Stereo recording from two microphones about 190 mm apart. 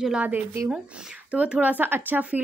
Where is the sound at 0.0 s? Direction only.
5° right (ahead or behind).